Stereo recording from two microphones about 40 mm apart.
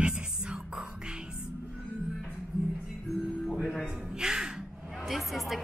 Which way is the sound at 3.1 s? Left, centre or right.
Centre.